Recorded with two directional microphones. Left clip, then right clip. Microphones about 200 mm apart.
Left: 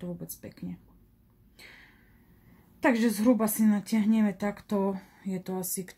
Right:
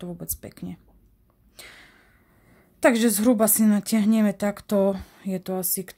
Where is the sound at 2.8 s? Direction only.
50° right (ahead or behind).